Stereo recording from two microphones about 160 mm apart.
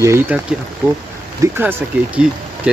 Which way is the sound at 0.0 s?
15° right (ahead or behind).